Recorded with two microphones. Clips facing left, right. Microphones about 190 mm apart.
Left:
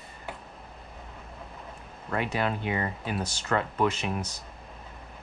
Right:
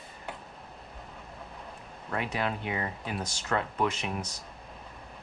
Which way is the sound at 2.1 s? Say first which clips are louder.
Left 3 dB; centre (ahead or behind).